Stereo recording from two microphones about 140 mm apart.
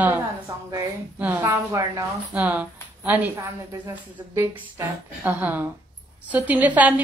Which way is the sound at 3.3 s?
25° right (ahead or behind).